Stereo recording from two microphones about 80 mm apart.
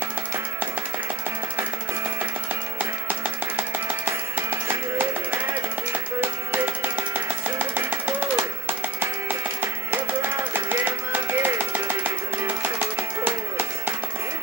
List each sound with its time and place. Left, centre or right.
2.8 s music: right